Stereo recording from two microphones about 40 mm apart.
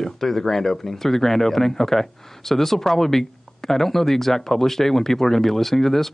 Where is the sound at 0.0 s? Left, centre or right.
Centre.